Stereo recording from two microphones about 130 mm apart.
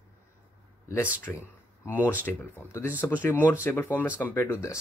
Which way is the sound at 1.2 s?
20° left (ahead or behind).